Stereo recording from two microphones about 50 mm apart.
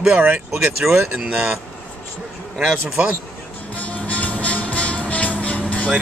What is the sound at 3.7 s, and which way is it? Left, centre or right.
Music, left.